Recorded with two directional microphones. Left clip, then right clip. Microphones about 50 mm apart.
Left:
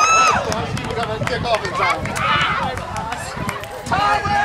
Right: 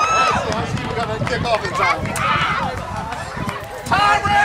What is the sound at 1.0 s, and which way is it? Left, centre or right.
Run, right.